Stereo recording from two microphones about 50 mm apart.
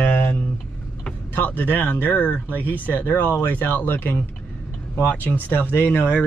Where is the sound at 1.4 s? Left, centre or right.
Left.